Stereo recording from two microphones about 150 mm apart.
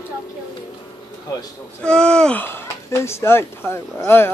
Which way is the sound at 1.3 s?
25° left (ahead or behind).